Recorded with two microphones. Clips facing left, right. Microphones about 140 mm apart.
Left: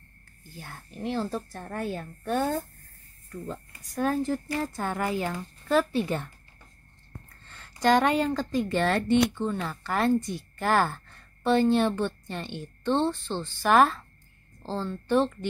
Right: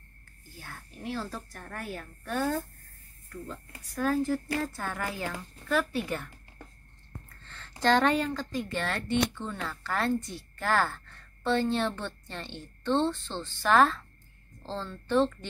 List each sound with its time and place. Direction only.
0.6 s a woman's voice: 20° left (ahead or behind)
7.4 s speech: 15° left (ahead or behind)